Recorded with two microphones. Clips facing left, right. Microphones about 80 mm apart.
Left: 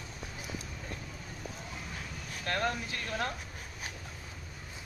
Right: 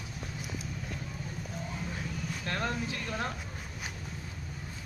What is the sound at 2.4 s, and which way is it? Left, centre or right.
Speech, left.